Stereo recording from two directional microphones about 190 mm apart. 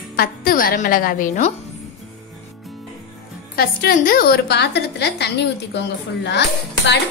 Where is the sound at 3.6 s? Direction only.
50° left (ahead or behind).